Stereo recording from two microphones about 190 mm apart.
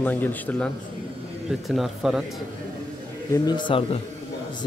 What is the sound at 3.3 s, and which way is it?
Speech, 20° left (ahead or behind).